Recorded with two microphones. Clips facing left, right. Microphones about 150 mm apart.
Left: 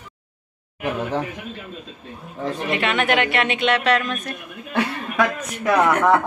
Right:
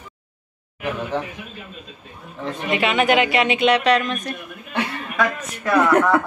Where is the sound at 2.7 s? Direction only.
5° right (ahead or behind).